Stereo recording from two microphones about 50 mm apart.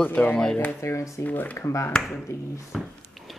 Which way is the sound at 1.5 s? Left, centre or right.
Left.